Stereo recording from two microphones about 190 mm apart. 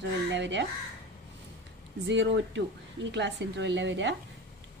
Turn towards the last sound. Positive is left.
turn(degrees=-70)  # may be behind; listen again after turning